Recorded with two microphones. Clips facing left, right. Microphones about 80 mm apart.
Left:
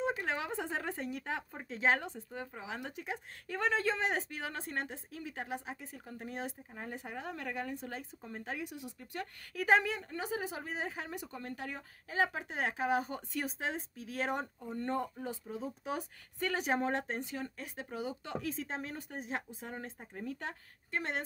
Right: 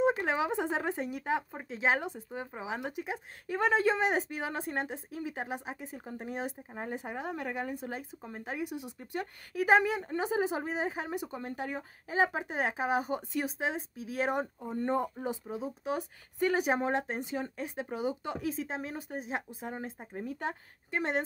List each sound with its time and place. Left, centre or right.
0.3 s speech: centre
15.5 s speech: centre
16.3 s speech: centre